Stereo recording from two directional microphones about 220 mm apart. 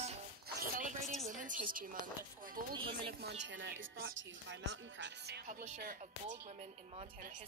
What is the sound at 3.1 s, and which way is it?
A woman's voice, 50° right (ahead or behind).